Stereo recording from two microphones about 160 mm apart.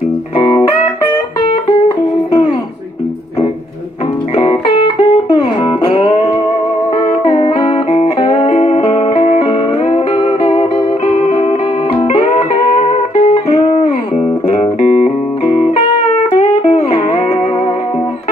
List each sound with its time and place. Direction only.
4.4 s music: 35° left (ahead or behind)